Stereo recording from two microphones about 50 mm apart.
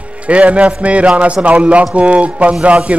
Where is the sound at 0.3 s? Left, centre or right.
Right.